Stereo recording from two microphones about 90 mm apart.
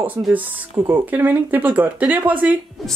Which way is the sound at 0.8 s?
25° right (ahead or behind).